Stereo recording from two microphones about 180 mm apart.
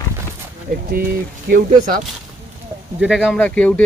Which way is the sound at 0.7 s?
45° right (ahead or behind).